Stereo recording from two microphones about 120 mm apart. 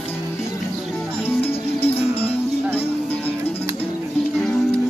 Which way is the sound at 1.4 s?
55° left (ahead or behind).